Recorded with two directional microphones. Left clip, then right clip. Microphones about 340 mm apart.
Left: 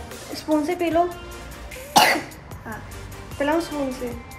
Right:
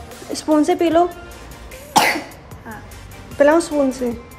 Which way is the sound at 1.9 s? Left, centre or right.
Centre.